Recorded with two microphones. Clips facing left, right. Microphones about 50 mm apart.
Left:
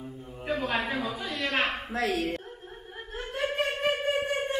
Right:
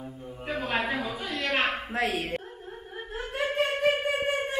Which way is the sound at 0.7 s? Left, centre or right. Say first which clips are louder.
Right 1 dB; right.